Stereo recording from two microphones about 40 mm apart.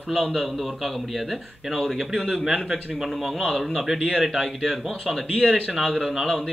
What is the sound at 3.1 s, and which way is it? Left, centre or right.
A man's voice, centre.